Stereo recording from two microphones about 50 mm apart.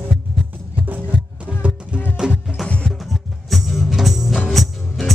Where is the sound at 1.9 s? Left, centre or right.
Right.